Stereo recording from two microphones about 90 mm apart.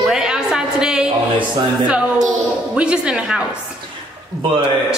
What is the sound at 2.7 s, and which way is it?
Speech, 10° right (ahead or behind).